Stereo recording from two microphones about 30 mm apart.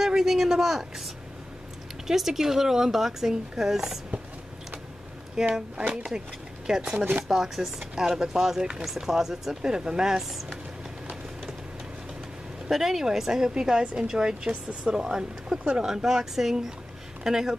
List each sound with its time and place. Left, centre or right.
0.0 s a woman's voice: centre
2.0 s a woman's voice: centre
5.3 s a woman's voice: right
7.2 s a woman's voice: centre
9.6 s a woman's voice: right
12.6 s a woman's voice: centre
13.4 s a woman's voice: right